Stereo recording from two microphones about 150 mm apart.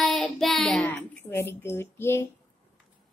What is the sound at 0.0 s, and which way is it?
A child's voice, centre (ahead or behind).